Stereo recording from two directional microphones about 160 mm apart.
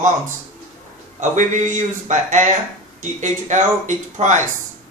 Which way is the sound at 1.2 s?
50° right (ahead or behind).